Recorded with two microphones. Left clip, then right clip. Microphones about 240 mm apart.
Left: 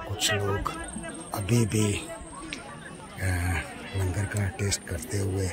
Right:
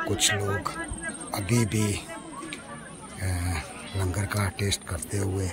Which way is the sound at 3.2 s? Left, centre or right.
Centre.